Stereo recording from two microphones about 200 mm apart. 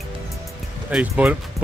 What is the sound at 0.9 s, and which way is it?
Speech, 5° right (ahead or behind).